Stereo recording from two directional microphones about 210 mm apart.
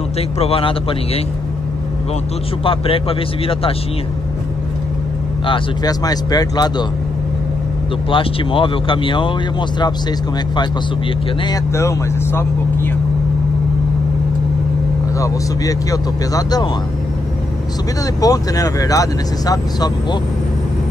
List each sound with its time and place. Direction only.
0.4 s speech: 25° left (ahead or behind)
2.6 s speech: 25° left (ahead or behind)
5.5 s speech: 20° left (ahead or behind)
8.1 s speech: 25° left (ahead or behind)
11.4 s speech: 15° left (ahead or behind)
15.1 s speech: 15° left (ahead or behind)
18.2 s speech: 15° left (ahead or behind)